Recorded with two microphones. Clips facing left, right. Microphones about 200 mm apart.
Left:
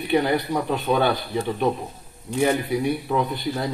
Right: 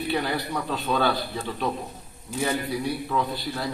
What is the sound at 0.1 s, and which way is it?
A man's voice, 20° left (ahead or behind).